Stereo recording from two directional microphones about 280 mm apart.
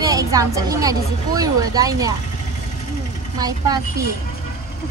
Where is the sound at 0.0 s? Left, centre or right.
Centre.